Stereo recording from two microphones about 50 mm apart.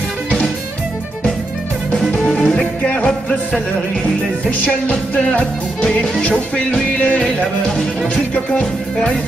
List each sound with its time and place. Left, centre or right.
2.2 s music: left
4.6 s music: left